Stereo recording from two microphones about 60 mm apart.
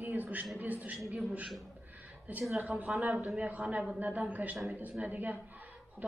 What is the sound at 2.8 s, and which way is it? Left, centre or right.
A man's voice, right.